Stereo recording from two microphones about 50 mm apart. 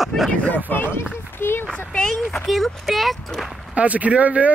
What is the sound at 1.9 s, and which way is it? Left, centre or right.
Speech, left.